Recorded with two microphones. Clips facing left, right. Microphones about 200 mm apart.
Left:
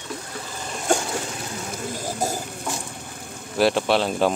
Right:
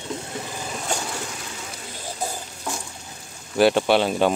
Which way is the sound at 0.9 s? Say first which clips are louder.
Left 8 dB; 50° left (ahead or behind).